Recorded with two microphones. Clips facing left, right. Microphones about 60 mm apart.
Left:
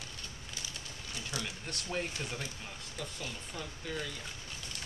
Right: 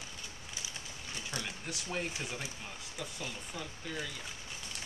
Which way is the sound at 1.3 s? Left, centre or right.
Right.